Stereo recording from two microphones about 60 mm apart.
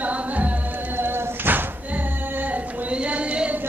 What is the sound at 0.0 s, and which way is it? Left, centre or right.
Music, right.